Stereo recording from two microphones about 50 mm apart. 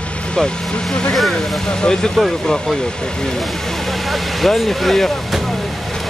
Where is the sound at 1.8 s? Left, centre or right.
Centre.